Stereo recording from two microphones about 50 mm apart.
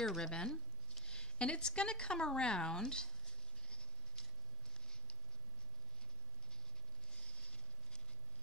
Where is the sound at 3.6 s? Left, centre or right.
Centre.